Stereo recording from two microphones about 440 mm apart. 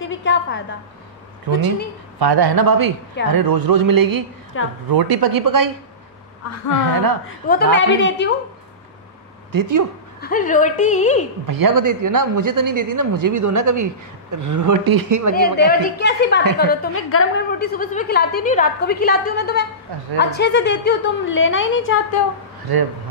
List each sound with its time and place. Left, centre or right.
0.1 s a sound: left
2.1 s a man's voice: right
7.4 s a woman's voice: left
9.5 s a man's voice: right
10.2 s a woman's voice: centre
11.4 s a man's voice: right
15.3 s a woman's voice: left